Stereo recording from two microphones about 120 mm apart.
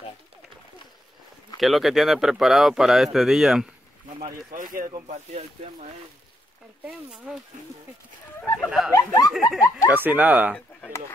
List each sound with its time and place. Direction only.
1.6 s a man's voice: centre (ahead or behind)
5.0 s speech: 70° right (ahead or behind)
7.1 s a man's voice: 5° right (ahead or behind)
8.6 s a man's voice: 5° right (ahead or behind)
8.9 s speech: 25° left (ahead or behind)
9.3 s a man's voice: centre (ahead or behind)
9.8 s speech: 15° right (ahead or behind)